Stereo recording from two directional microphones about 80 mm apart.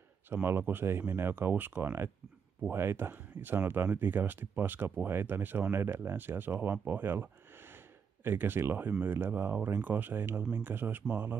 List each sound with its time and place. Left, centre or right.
0.3 s speech: right
6.9 s a sound: right
9.0 s speech: right